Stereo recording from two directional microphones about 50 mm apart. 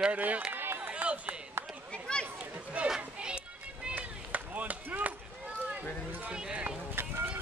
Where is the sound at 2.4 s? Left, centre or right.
Right.